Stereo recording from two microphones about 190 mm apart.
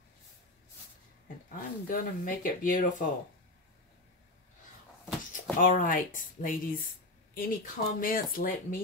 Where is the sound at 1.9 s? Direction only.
45° left (ahead or behind).